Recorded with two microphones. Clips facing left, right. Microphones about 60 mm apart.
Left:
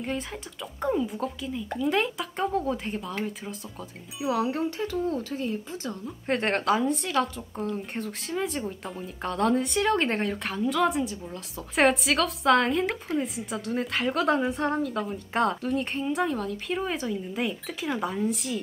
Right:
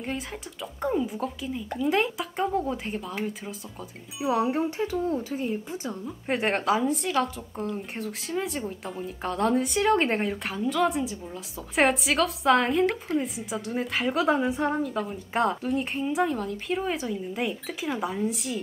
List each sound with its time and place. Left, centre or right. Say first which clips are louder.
0.0 s speech: left 1 dB; centre
4.6 s speech: right 1 dB; centre
6.0 s speech: even; centre